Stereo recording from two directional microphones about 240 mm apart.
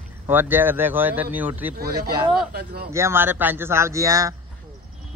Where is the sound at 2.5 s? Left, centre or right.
Right.